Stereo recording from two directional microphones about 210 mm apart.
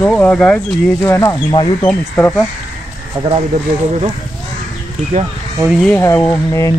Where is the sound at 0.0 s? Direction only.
5° left (ahead or behind).